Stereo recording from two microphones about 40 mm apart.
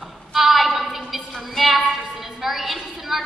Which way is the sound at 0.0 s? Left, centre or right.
Centre.